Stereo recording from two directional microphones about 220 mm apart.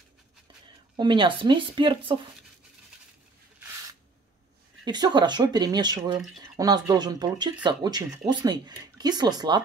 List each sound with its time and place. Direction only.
0.9 s speech: 20° right (ahead or behind)
4.8 s speech: 20° right (ahead or behind)